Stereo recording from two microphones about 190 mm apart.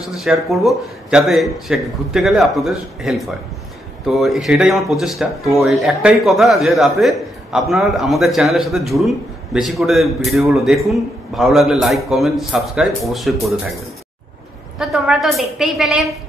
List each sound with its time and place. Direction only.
0.0 s a man's voice: centre (ahead or behind)
14.8 s a man's voice: centre (ahead or behind)